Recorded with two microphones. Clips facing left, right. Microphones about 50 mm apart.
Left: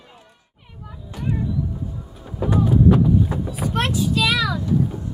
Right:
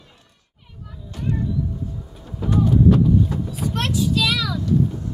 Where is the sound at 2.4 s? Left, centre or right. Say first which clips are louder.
Even; centre.